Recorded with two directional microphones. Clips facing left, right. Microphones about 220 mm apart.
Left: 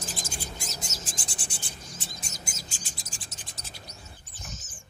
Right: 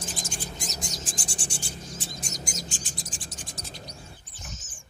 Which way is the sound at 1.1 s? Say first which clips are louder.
Right 4 dB; 30° right (ahead or behind).